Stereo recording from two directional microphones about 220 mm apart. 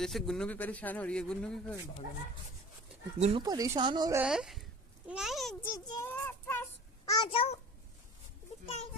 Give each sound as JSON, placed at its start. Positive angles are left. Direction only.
{"t": 0.0, "sound": "a man's voice", "side_deg": 0}
{"t": 3.2, "sound": "speech", "side_deg": -30}
{"t": 3.4, "sound": "speech", "side_deg": -15}
{"t": 4.2, "sound": "a child's voice", "side_deg": -5}